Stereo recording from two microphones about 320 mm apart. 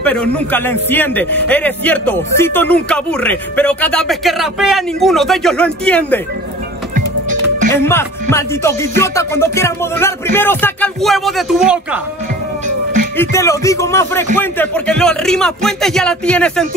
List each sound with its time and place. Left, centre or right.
0.0 s a man's voice: centre
7.7 s music: centre
13.2 s music: centre
14.3 s a man's voice: centre